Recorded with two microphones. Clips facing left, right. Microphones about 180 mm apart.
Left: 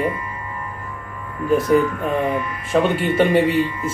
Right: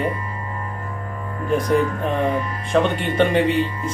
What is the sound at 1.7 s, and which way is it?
Speech, 35° right (ahead or behind).